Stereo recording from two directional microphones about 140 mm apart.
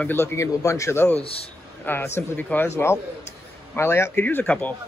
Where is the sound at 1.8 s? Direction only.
15° left (ahead or behind).